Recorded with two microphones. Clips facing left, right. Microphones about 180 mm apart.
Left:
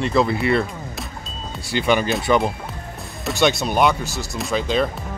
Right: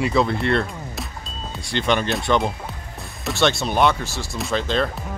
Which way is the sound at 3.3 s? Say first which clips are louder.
Left 2 dB; 15° left (ahead or behind).